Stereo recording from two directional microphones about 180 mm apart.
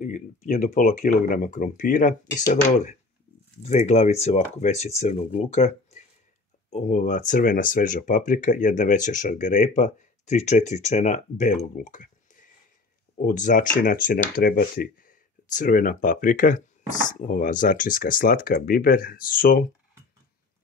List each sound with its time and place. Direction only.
0.0 s speech: 45° left (ahead or behind)